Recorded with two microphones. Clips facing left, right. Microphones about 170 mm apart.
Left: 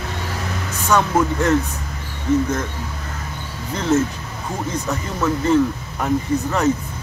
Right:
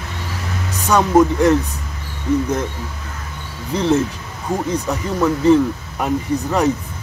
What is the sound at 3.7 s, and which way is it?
Speech, 15° right (ahead or behind).